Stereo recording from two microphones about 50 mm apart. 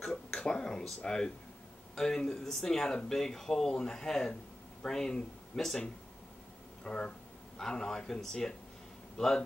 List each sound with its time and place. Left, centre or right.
0.1 s a sound: centre
2.0 s speech: centre
6.8 s speech: left